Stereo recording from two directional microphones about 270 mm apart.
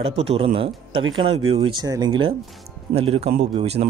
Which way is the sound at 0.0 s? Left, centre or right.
Right.